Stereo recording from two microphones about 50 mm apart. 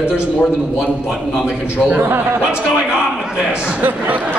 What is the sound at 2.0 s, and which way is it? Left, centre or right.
Speech, right.